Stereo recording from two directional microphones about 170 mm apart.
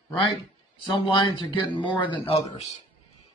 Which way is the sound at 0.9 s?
30° left (ahead or behind).